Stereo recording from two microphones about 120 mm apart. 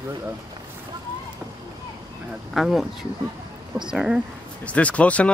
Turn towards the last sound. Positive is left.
turn(degrees=10)  # may be behind; listen again after turning